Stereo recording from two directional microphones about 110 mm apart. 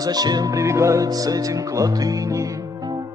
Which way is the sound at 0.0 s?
35° right (ahead or behind).